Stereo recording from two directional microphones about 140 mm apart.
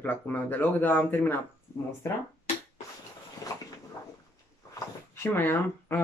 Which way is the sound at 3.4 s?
25° left (ahead or behind).